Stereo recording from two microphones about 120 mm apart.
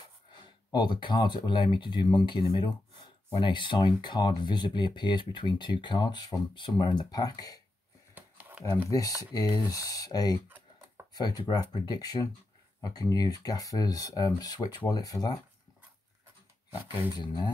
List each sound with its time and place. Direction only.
0.7 s speech: 40° left (ahead or behind)
8.1 s a sound: 15° right (ahead or behind)
8.8 s speech: 30° left (ahead or behind)
17.1 s speech: 35° left (ahead or behind)